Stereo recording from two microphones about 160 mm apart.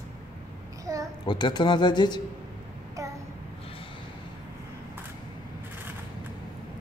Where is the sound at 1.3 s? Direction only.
30° left (ahead or behind).